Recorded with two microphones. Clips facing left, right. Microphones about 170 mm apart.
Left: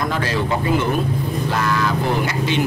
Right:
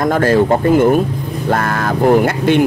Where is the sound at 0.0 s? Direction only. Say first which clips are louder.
Right 10 dB; 50° right (ahead or behind).